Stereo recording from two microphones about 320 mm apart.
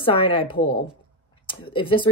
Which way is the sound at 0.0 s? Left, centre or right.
Centre.